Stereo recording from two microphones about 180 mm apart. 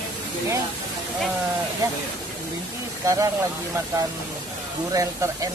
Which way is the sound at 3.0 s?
15° right (ahead or behind).